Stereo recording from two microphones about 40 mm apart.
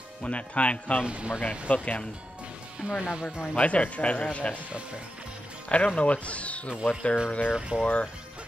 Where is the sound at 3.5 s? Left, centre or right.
Left.